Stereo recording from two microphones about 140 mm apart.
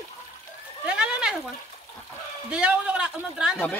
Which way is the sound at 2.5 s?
5° right (ahead or behind).